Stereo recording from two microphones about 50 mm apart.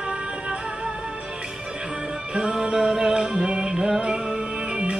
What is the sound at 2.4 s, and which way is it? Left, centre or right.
Music, centre.